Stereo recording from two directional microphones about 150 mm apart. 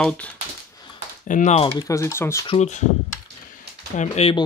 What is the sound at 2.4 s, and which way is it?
Speech, 50° left (ahead or behind).